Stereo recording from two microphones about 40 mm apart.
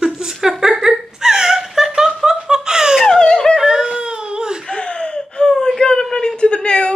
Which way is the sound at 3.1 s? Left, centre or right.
Centre.